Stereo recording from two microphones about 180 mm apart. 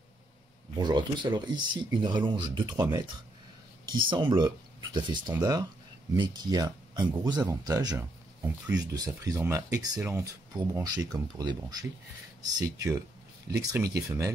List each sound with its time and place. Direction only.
0.7 s speech: 25° right (ahead or behind)